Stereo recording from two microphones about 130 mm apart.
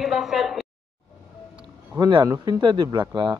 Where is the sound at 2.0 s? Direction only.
30° right (ahead or behind).